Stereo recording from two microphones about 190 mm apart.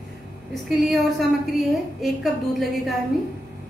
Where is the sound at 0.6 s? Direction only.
Centre (ahead or behind).